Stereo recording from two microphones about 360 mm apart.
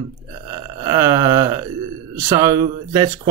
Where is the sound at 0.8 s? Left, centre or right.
Centre.